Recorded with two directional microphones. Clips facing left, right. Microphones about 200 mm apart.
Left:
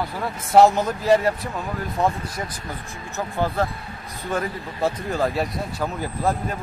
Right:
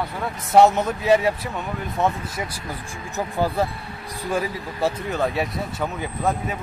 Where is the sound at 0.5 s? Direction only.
Centre (ahead or behind).